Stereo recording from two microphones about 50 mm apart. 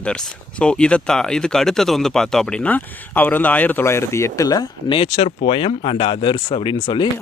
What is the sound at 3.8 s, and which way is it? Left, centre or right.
Speech, left.